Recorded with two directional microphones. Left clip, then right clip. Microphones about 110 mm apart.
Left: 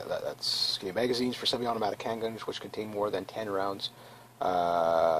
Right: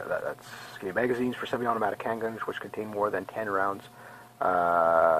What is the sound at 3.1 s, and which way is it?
Speech, 20° left (ahead or behind).